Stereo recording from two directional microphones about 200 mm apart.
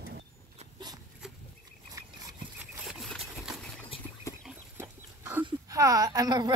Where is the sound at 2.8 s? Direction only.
Centre (ahead or behind).